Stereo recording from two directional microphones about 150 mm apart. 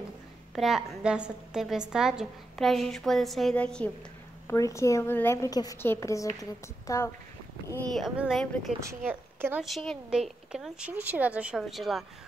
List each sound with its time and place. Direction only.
0.6 s a woman's voice: 5° right (ahead or behind)
4.5 s a woman's voice: 20° left (ahead or behind)
7.9 s a woman's voice: centre (ahead or behind)
8.8 s a woman's voice: 15° right (ahead or behind)
9.6 s a woman's voice: centre (ahead or behind)